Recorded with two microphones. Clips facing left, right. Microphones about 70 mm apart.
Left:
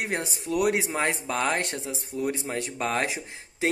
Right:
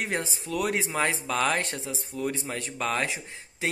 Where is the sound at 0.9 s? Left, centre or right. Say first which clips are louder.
Even; left.